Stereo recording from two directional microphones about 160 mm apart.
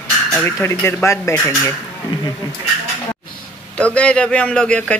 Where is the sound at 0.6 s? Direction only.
15° left (ahead or behind).